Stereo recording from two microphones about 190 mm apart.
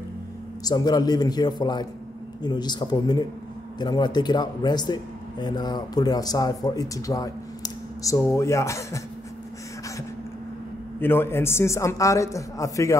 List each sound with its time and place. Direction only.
0.7 s speech: 20° left (ahead or behind)
11.0 s a man's voice: 10° left (ahead or behind)